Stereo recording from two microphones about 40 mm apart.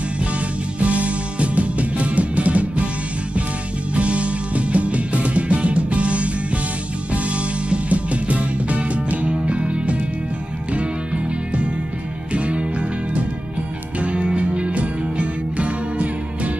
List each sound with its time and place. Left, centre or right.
0.7 s music: right
3.9 s music: right
12.3 s music: right